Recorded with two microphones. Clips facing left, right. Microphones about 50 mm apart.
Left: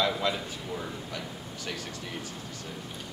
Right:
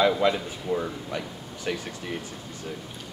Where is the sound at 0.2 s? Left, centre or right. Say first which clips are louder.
Right 6 dB; right.